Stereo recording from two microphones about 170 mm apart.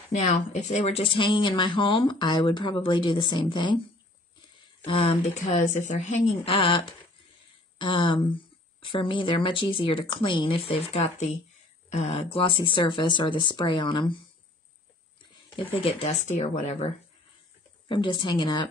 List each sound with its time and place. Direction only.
0.1 s speech: 45° left (ahead or behind); by 3.8 s 30° left (ahead or behind)
4.8 s speech: 35° left (ahead or behind)
6.5 s speech: 30° left (ahead or behind)
15.5 s speech: 30° left (ahead or behind)
17.8 s speech: 30° left (ahead or behind)